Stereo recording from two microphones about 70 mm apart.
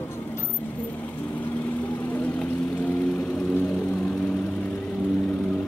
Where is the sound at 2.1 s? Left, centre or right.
Centre.